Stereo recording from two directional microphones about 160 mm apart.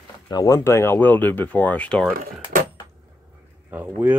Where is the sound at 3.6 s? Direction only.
10° right (ahead or behind).